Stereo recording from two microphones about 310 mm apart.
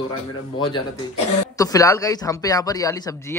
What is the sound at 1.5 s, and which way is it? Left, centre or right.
A man's voice, centre.